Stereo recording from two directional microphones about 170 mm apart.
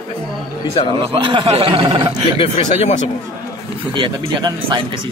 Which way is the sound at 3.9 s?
25° right (ahead or behind).